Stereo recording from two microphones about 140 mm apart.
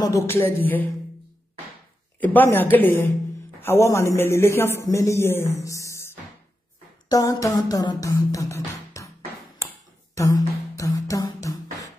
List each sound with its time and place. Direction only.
0.0 s speech: 20° left (ahead or behind)
2.3 s a man's voice: 15° left (ahead or behind)
7.5 s music: 25° left (ahead or behind)
10.1 s music: 25° left (ahead or behind)